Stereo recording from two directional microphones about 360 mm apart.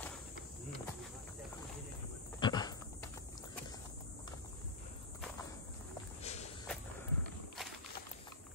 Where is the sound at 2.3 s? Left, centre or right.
Centre.